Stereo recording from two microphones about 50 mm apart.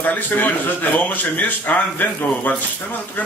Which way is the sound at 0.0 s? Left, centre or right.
Left.